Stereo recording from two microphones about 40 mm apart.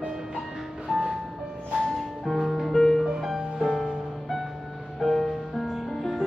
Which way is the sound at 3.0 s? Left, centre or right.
Centre.